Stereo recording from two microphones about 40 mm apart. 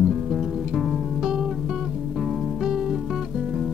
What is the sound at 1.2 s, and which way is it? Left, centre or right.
Music, centre.